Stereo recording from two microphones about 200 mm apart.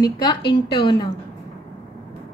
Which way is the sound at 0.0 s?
20° left (ahead or behind).